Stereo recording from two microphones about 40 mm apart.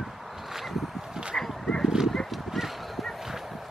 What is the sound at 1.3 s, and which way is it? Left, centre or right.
Dog, left.